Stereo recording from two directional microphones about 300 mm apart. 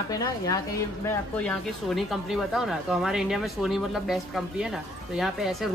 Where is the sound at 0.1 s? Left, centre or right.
Centre.